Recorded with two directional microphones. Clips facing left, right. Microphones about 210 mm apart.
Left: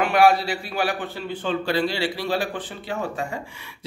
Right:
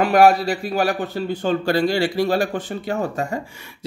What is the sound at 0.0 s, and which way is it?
A man's voice, 40° right (ahead or behind).